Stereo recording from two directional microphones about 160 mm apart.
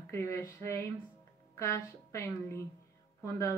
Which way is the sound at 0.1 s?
15° left (ahead or behind).